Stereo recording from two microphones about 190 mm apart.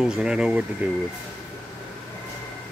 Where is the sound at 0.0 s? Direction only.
5° right (ahead or behind).